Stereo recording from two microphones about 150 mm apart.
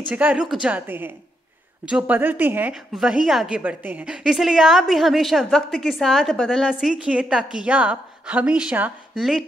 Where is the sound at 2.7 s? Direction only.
Centre (ahead or behind).